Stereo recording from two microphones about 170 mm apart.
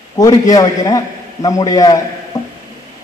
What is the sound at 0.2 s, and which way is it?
A man's voice, 20° left (ahead or behind).